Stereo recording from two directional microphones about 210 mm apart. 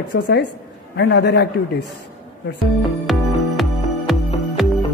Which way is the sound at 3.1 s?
Centre (ahead or behind).